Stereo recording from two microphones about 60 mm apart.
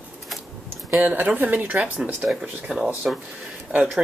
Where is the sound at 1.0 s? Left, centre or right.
Right.